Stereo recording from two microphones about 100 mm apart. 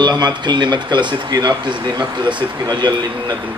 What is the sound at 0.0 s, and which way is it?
Speech, 45° right (ahead or behind).